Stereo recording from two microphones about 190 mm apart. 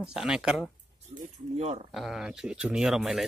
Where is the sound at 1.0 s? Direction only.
35° right (ahead or behind).